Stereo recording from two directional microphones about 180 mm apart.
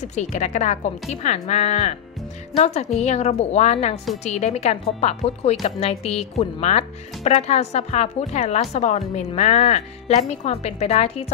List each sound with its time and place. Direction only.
0.0 s speech: 40° left (ahead or behind)